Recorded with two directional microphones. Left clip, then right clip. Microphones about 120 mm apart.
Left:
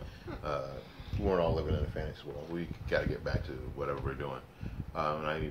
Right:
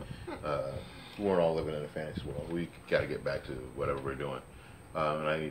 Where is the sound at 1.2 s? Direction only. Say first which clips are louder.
Right 2 dB; 30° left (ahead or behind).